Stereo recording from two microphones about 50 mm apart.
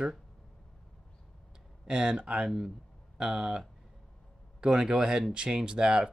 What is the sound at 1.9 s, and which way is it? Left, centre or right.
Speech, centre.